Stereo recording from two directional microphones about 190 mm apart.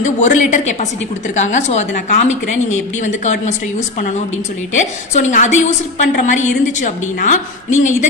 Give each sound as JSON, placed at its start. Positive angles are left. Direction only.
{"t": 0.0, "sound": "a woman's voice", "side_deg": 40}
{"t": 4.7, "sound": "a woman's voice", "side_deg": 40}